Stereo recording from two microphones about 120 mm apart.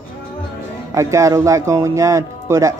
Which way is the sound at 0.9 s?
25° right (ahead or behind).